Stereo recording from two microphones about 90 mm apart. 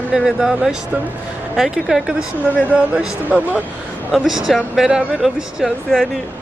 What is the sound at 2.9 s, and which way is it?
Speech, 15° right (ahead or behind).